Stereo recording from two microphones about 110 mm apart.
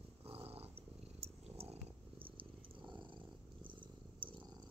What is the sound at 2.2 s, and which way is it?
Purr, 50° right (ahead or behind).